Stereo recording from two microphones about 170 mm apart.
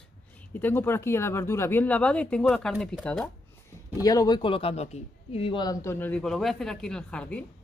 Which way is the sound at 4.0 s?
20° left (ahead or behind).